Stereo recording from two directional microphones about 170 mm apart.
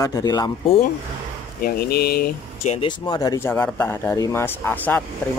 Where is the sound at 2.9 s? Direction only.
25° left (ahead or behind).